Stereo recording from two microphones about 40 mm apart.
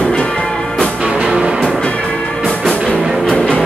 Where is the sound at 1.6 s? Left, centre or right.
Centre.